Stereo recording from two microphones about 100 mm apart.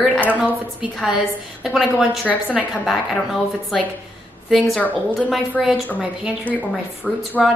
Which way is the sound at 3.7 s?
Centre (ahead or behind).